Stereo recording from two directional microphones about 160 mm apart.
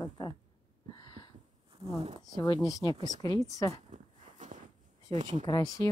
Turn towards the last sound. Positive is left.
turn(degrees=25)  # may be behind; listen again after turning